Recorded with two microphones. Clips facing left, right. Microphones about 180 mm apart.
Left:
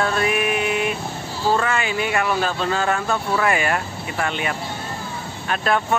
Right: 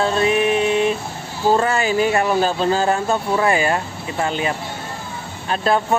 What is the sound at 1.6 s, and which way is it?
Speech, 35° right (ahead or behind).